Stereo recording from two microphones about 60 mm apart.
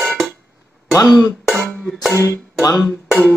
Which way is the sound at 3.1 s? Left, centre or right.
Centre.